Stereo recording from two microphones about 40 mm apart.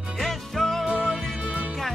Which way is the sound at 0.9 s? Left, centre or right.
Right.